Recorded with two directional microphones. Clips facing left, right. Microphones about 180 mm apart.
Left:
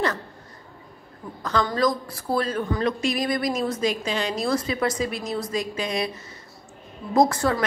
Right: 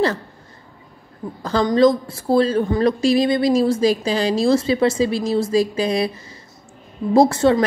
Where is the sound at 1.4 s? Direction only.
30° right (ahead or behind).